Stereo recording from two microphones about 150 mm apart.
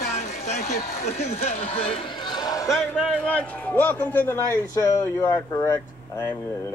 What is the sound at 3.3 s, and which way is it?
A man's voice, 10° left (ahead or behind).